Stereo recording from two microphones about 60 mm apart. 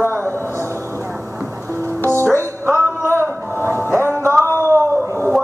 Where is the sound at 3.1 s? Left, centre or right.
Right.